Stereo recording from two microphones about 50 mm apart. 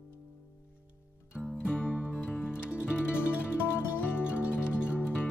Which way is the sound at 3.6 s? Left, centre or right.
Left.